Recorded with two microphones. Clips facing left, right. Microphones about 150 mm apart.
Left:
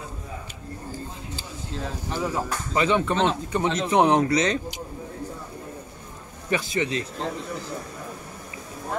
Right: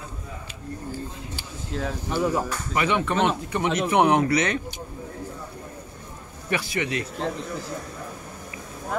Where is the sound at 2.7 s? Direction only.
25° left (ahead or behind).